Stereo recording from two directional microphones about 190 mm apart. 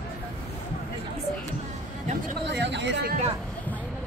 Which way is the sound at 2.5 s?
65° right (ahead or behind).